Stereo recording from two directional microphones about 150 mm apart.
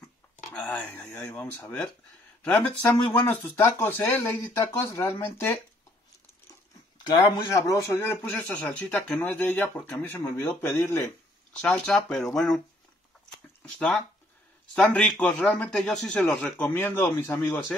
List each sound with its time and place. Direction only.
0.6 s speech: 10° left (ahead or behind)
7.1 s speech: 20° left (ahead or behind)